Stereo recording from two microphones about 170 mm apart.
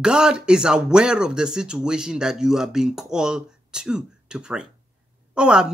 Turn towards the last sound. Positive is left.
turn(degrees=-5)  # may be behind; listen again after turning